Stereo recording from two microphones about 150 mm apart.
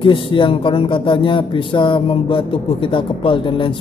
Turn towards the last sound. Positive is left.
turn(degrees=35)  # may be behind; listen again after turning